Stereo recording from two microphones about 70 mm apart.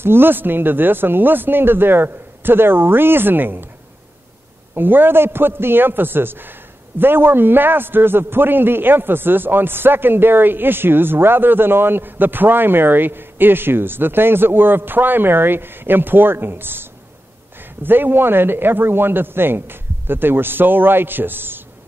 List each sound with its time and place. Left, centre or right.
0.0 s a man's voice: right
4.7 s a man's voice: right